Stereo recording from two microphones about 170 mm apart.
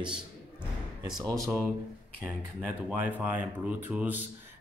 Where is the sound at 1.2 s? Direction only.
20° right (ahead or behind).